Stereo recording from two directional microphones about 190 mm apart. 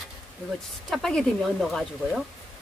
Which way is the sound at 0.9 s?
Centre (ahead or behind).